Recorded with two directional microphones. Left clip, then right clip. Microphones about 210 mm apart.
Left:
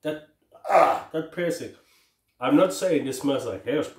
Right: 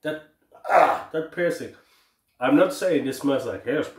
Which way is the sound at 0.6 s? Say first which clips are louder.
Right 1 dB; 5° right (ahead or behind).